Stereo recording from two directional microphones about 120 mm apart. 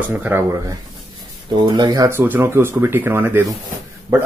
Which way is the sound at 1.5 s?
40° right (ahead or behind).